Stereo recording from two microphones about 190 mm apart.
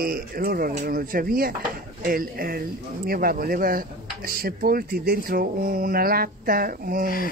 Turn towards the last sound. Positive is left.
turn(degrees=-50)  # may be behind; listen again after turning